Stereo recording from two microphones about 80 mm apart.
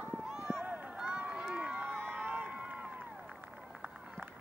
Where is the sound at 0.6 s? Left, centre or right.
Right.